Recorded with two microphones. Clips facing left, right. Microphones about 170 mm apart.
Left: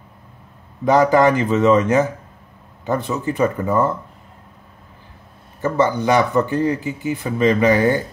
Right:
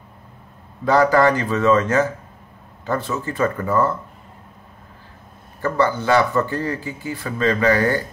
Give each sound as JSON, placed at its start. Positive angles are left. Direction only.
{"t": 0.8, "sound": "speech", "side_deg": 20}
{"t": 5.6, "sound": "speech", "side_deg": 15}